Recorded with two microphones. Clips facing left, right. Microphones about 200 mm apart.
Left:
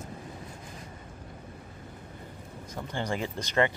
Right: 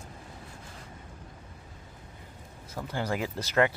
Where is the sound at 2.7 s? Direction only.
5° right (ahead or behind).